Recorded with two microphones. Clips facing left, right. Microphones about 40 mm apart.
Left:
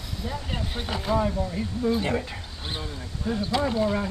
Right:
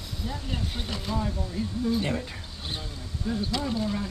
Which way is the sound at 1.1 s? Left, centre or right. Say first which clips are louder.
Left 6 dB; left.